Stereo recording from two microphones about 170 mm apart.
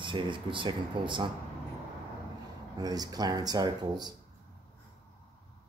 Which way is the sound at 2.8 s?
20° right (ahead or behind).